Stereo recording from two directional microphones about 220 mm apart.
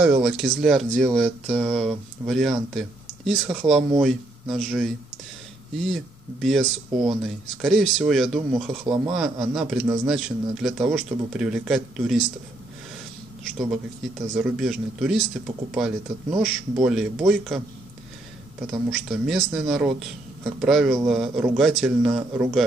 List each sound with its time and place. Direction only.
0.0 s speech: 5° right (ahead or behind)
6.4 s speech: centre (ahead or behind)
8.8 s speech: 20° right (ahead or behind)
9.1 s speech: centre (ahead or behind)
13.4 s a man's voice: centre (ahead or behind)
18.7 s speech: centre (ahead or behind)